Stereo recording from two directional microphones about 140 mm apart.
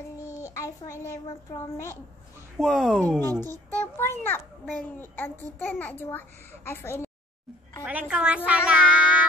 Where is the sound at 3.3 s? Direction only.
25° right (ahead or behind).